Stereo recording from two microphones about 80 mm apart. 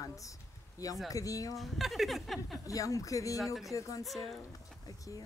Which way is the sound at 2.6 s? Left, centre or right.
Left.